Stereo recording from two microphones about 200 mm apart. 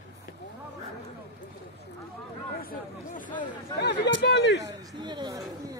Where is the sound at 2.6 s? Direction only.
45° left (ahead or behind).